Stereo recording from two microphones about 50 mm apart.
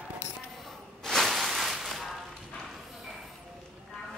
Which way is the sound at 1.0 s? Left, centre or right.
Centre.